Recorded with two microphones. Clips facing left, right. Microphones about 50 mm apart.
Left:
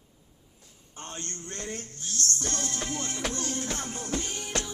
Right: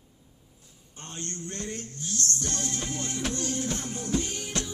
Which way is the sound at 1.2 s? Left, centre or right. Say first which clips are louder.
Right 5 dB; left.